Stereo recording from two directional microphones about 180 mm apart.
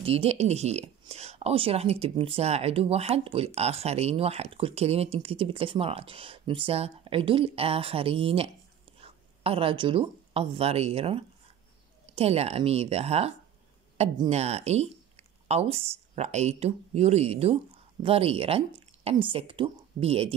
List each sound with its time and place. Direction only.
0.0 s a woman's voice: 35° right (ahead or behind)